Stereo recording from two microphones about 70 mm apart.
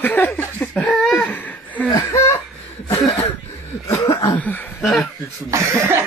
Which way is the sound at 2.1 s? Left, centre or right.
Left.